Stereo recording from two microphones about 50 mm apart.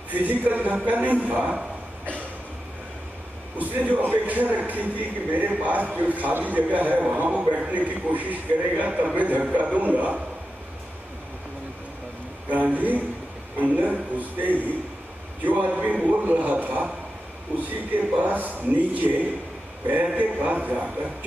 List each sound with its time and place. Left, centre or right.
0.1 s a man's voice: right
3.5 s a man's voice: right
12.4 s a man's voice: right
17.9 s a man's voice: right